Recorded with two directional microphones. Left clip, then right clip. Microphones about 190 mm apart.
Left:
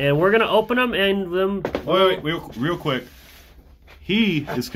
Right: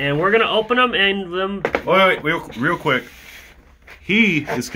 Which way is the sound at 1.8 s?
20° right (ahead or behind).